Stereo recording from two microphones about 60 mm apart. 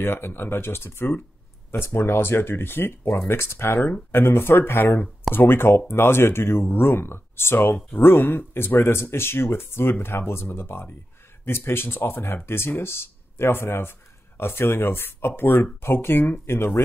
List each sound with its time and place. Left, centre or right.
0.0 s speech: left